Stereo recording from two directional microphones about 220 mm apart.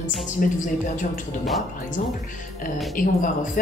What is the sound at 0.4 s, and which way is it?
Speech, 40° left (ahead or behind).